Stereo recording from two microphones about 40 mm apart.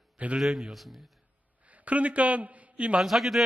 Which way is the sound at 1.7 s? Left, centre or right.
Right.